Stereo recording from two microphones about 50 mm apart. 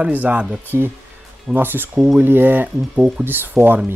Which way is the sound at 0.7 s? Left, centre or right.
Right.